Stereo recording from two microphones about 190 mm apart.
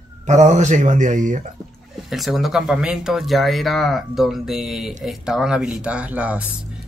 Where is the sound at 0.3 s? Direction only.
40° right (ahead or behind).